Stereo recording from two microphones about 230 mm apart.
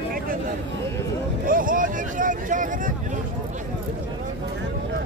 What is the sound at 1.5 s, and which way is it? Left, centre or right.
Vehicle, right.